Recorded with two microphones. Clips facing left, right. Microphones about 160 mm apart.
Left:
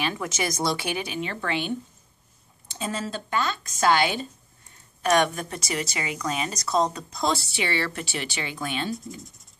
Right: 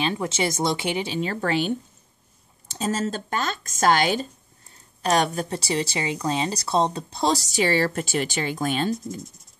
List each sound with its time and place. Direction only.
0.0 s speech: 25° right (ahead or behind)
2.7 s a woman's voice: 40° right (ahead or behind)